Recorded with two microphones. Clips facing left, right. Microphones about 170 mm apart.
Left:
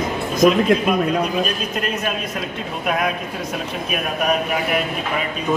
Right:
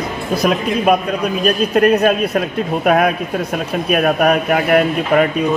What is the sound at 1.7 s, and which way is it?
Speech, 65° right (ahead or behind).